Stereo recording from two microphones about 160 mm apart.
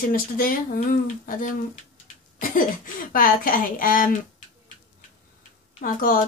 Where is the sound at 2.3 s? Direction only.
60° left (ahead or behind).